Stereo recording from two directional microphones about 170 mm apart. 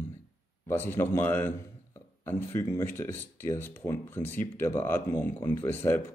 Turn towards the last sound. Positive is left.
turn(degrees=10)  # may be behind; listen again after turning